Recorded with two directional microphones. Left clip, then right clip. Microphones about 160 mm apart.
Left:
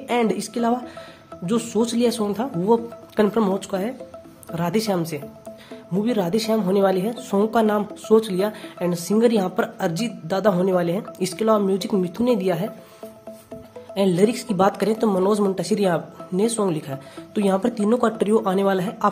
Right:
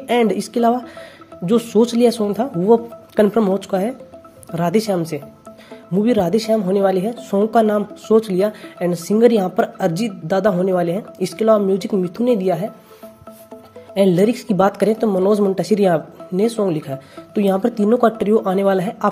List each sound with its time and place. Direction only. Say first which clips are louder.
0.0 s a woman's voice: right 5 dB; 30° right (ahead or behind)
10.5 s speech: right 3 dB; 10° right (ahead or behind)
13.9 s a woman's voice: right 4 dB; 25° right (ahead or behind)